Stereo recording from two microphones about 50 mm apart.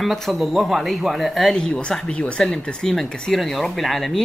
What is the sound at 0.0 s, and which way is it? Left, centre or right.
Speech, centre.